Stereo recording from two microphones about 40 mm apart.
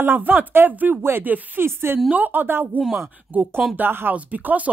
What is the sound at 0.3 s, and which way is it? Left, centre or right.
Speech, right.